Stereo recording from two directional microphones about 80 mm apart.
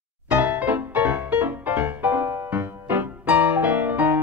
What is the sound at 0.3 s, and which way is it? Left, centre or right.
Music, centre.